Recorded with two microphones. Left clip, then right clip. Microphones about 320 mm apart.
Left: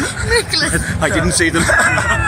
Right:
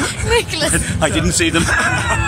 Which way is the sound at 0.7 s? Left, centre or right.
Centre.